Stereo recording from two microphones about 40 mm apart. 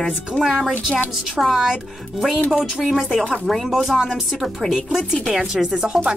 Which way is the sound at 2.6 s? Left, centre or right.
Centre.